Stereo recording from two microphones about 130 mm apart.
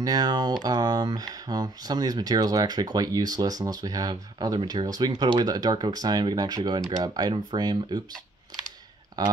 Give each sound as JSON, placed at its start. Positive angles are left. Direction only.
{"t": 0.0, "sound": "speech", "side_deg": -30}